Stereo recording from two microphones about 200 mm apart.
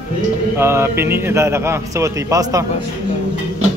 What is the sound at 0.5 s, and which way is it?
A man's voice, 10° right (ahead or behind).